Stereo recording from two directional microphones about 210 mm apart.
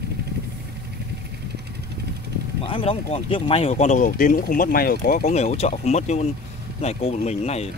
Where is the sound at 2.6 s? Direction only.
25° left (ahead or behind); by 5.2 s 45° left (ahead or behind).